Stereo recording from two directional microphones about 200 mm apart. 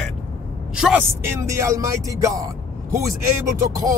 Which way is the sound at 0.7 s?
10° right (ahead or behind).